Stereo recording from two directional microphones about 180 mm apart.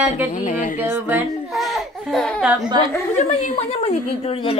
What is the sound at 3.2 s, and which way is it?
Speech, 35° left (ahead or behind).